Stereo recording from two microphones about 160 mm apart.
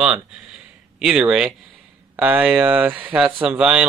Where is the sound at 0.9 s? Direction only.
5° right (ahead or behind).